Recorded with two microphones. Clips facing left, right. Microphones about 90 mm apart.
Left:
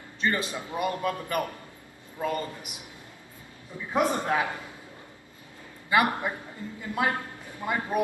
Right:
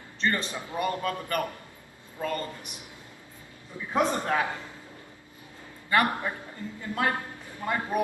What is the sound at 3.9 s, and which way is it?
Speech, 10° left (ahead or behind).